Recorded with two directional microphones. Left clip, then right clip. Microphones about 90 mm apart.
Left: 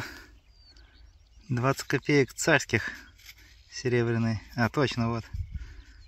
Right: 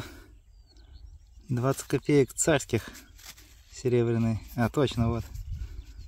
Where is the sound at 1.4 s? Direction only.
15° right (ahead or behind).